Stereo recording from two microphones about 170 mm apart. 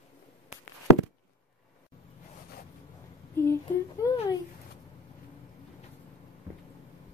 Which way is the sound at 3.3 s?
15° left (ahead or behind).